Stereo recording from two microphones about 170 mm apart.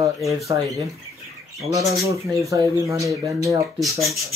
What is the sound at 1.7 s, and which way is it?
Speech, 20° right (ahead or behind).